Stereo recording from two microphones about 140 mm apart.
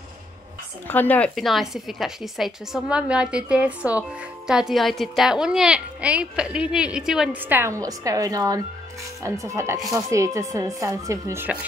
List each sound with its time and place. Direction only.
0.8 s speech: 10° left (ahead or behind)
1.3 s a woman's voice: centre (ahead or behind); by 11.5 s 20° right (ahead or behind)